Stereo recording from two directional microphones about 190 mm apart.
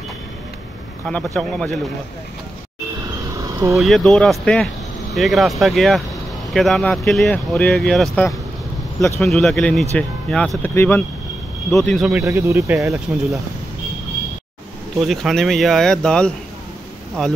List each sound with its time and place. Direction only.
1.0 s speech: 5° left (ahead or behind)
3.3 s a sound: 15° right (ahead or behind)
3.7 s speech: centre (ahead or behind)
12.1 s speech: 15° right (ahead or behind)
15.0 s speech: centre (ahead or behind)